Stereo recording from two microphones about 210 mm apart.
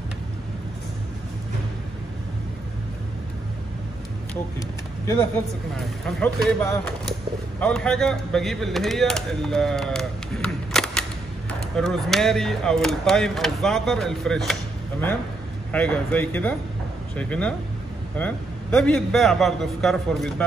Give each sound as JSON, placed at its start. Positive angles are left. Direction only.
{"t": 4.6, "sound": "speech", "side_deg": 15}
{"t": 5.8, "sound": "speech", "side_deg": 0}
{"t": 6.6, "sound": "speech", "side_deg": 15}
{"t": 7.6, "sound": "speech", "side_deg": 5}